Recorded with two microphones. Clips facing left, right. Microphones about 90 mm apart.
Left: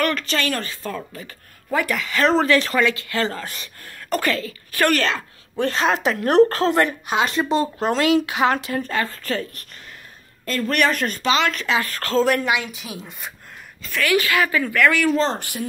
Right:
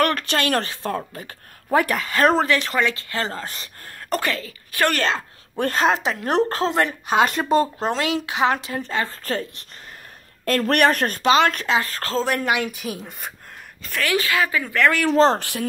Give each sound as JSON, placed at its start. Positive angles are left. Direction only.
{"t": 0.0, "sound": "speech", "side_deg": -55}
{"t": 2.3, "sound": "speech", "side_deg": -15}
{"t": 2.8, "sound": "speech", "side_deg": -30}
{"t": 4.2, "sound": "speech", "side_deg": -20}
{"t": 5.6, "sound": "speech", "side_deg": -45}
{"t": 5.9, "sound": "speech", "side_deg": -25}
{"t": 7.1, "sound": "speech", "side_deg": -45}
{"t": 7.9, "sound": "speech", "side_deg": -20}
{"t": 10.7, "sound": "speech", "side_deg": -50}
{"t": 12.4, "sound": "speech", "side_deg": -50}
{"t": 13.9, "sound": "speech", "side_deg": -30}
{"t": 14.7, "sound": "speech", "side_deg": -30}
{"t": 15.1, "sound": "speech", "side_deg": -90}